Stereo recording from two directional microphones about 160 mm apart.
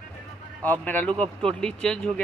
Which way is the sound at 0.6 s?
10° left (ahead or behind).